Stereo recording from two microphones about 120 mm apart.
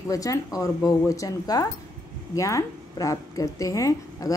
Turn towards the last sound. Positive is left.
turn(degrees=25)  # may be behind; listen again after turning